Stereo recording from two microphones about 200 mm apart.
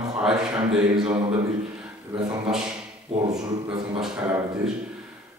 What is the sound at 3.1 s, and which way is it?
Speech, 30° right (ahead or behind).